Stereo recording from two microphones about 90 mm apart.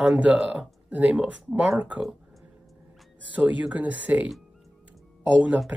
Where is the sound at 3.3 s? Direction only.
15° right (ahead or behind).